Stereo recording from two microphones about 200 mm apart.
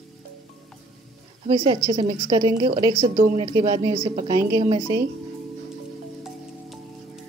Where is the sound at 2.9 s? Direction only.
40° right (ahead or behind).